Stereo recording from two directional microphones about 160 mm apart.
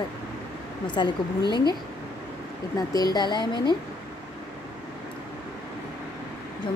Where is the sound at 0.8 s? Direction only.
30° left (ahead or behind).